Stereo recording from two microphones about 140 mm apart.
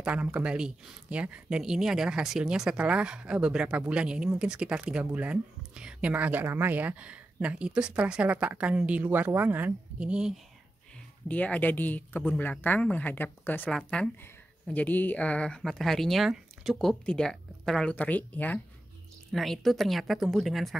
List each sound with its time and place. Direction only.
0.0 s speech: 10° right (ahead or behind)
11.2 s a woman's voice: 10° left (ahead or behind)